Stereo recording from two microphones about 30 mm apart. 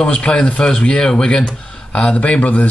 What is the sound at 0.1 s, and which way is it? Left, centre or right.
Speech, left.